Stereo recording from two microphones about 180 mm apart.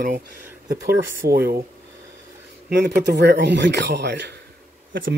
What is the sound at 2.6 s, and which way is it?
Speech, 65° right (ahead or behind).